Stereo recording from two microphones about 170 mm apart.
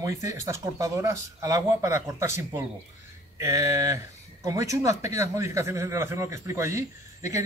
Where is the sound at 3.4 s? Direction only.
20° right (ahead or behind).